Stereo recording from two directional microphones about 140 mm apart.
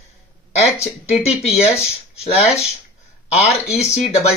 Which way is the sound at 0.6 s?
50° left (ahead or behind).